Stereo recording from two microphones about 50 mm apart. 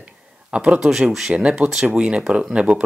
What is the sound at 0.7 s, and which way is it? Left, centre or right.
Speech, centre.